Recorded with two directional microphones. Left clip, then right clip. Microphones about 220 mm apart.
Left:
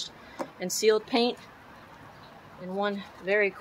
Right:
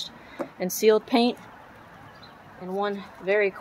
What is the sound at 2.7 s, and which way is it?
Speech, 40° right (ahead or behind).